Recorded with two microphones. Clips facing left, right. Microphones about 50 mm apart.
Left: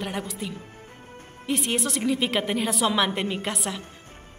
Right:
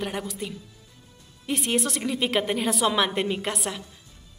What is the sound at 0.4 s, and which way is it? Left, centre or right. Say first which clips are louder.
A man's voice: left 1 dB; centre.